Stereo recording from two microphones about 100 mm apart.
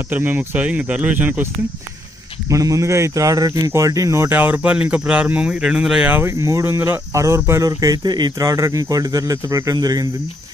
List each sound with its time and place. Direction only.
0.1 s speech: 20° right (ahead or behind)
2.5 s speech: 35° right (ahead or behind)